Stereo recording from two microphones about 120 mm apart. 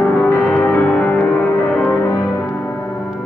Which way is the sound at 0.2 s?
20° left (ahead or behind).